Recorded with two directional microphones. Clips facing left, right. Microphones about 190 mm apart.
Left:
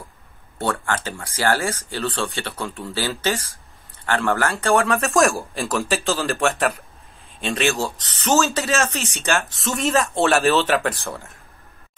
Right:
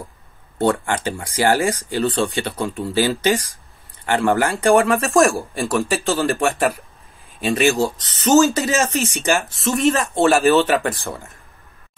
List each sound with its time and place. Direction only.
0.6 s a man's voice: 20° right (ahead or behind)
9.6 s speech: centre (ahead or behind)